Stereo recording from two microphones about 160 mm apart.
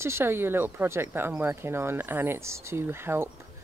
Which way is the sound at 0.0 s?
15° right (ahead or behind).